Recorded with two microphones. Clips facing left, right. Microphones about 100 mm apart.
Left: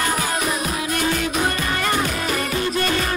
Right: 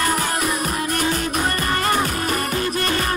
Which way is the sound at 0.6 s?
40° right (ahead or behind).